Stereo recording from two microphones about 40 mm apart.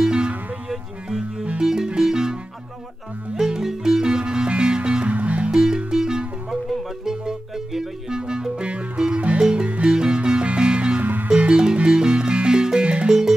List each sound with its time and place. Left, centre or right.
0.0 s music: right
3.3 s music: centre; by 5.5 s right
5.5 s music: centre
6.7 s music: centre
8.2 s music: centre